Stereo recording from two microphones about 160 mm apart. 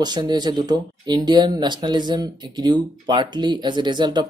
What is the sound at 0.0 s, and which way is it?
Speech, 25° right (ahead or behind).